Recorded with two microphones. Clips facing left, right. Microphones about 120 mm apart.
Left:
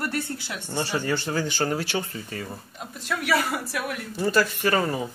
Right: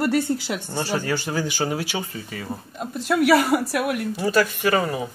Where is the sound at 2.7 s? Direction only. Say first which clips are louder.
Right 8 dB; 45° right (ahead or behind).